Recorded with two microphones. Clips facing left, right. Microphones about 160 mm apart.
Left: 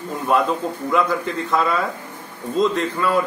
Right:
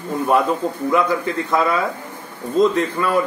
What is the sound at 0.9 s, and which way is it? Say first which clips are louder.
A man's voice: right 1 dB; centre (ahead or behind).